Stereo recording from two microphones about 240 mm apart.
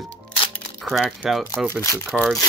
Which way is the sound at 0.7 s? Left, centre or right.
Centre.